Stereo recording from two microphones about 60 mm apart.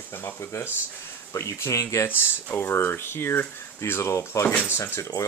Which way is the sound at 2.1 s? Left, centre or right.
Left.